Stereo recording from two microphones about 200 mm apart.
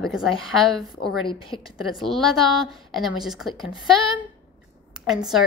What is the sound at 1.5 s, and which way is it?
A woman's voice, centre (ahead or behind).